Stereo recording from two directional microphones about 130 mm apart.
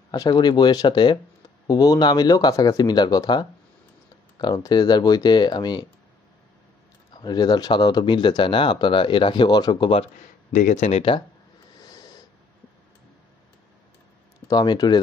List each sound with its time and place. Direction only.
0.1 s speech: 30° left (ahead or behind)
7.2 s speech: 30° left (ahead or behind)
10.5 s speech: 80° left; by 11.1 s 55° left (ahead or behind)
11.8 s snort: 30° left (ahead or behind)
14.5 s speech: 30° left (ahead or behind)